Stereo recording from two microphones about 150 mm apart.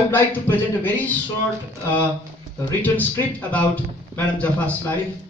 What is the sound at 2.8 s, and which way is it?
A man's voice, 10° left (ahead or behind).